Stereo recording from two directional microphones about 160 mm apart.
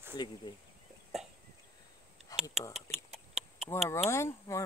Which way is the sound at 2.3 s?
20° left (ahead or behind).